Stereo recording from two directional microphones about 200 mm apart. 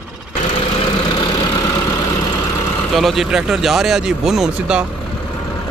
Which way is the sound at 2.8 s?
Centre (ahead or behind).